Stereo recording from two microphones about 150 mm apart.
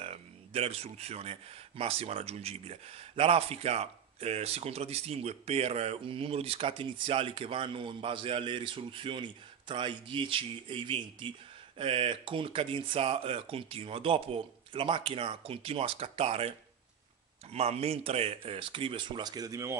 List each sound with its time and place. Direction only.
0.0 s speech: 40° right (ahead or behind); by 19.8 s 20° right (ahead or behind)